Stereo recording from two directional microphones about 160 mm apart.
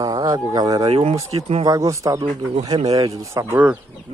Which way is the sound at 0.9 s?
40° right (ahead or behind).